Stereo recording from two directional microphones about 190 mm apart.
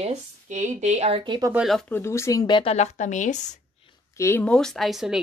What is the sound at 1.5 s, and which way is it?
Speech, centre (ahead or behind).